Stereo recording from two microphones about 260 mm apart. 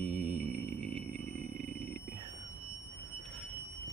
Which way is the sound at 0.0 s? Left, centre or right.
Right.